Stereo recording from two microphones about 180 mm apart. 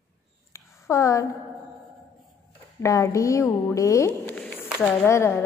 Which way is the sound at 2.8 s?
15° left (ahead or behind).